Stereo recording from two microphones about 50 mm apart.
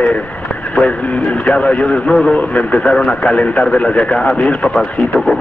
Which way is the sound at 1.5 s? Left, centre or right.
Left.